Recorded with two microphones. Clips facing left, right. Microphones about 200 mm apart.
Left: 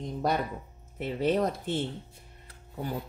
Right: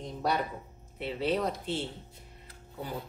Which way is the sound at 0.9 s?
45° left (ahead or behind).